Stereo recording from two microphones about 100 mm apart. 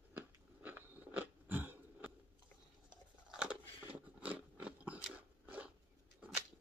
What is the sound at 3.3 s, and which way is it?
Biting, 10° right (ahead or behind).